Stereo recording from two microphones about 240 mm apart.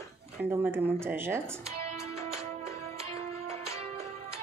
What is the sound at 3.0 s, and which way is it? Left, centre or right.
Music, right.